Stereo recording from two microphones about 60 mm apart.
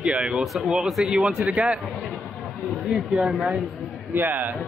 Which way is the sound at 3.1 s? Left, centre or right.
Centre.